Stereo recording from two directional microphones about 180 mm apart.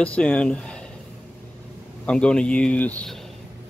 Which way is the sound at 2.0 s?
5° left (ahead or behind).